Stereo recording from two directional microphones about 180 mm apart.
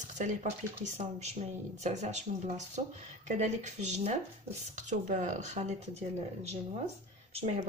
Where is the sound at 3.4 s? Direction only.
40° right (ahead or behind).